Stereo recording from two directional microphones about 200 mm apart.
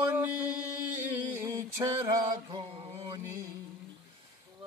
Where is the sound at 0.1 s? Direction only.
10° right (ahead or behind); by 3.2 s 25° right (ahead or behind).